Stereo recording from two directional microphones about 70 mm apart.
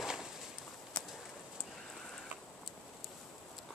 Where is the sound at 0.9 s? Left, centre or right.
Centre.